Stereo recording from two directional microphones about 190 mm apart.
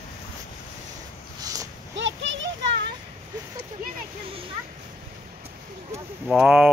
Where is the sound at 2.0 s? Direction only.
75° right (ahead or behind).